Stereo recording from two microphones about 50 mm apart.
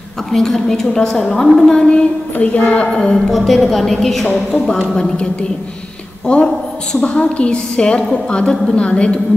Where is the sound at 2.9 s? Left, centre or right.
Centre.